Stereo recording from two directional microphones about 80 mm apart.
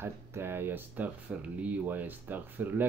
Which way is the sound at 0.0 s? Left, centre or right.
Right.